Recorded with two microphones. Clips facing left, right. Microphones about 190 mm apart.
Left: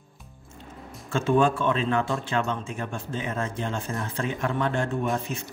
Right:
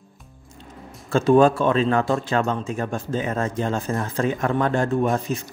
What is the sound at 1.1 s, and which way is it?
Speech, 40° right (ahead or behind).